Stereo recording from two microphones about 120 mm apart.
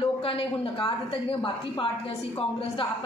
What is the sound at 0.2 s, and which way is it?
Speech, 45° left (ahead or behind).